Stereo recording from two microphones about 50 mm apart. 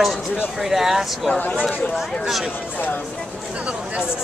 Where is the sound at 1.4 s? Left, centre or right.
Left.